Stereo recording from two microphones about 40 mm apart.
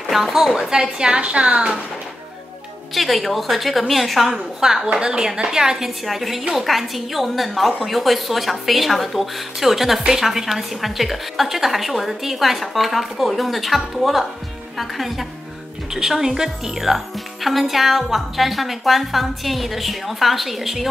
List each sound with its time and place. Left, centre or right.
0.0 s a woman's voice: centre
2.9 s a woman's voice: centre
4.6 s a woman's voice: centre
6.0 s a woman's voice: centre